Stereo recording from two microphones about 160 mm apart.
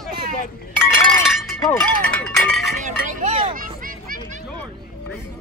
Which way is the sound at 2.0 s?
5° left (ahead or behind).